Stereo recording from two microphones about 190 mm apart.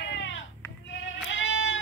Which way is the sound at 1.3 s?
80° left.